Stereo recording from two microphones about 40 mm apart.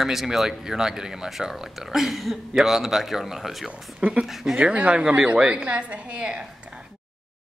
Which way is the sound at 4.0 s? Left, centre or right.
Right.